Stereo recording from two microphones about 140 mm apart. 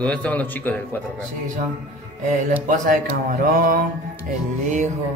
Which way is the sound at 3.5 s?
80° right.